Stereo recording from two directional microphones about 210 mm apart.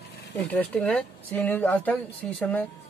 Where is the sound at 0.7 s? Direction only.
5° left (ahead or behind).